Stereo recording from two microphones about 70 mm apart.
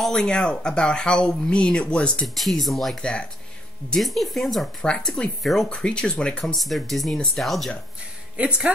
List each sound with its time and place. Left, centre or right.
0.0 s speech: centre
2.2 s speech: centre
3.0 s speech: centre
3.9 s speech: centre
5.7 s speech: centre
6.4 s speech: centre
8.4 s speech: centre